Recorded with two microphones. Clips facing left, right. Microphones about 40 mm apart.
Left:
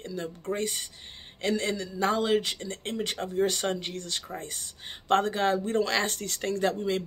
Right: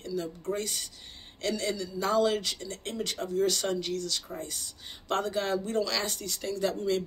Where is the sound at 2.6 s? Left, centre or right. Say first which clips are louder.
Left 2 dB; left.